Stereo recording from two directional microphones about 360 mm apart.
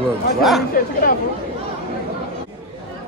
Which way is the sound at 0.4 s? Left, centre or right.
Centre.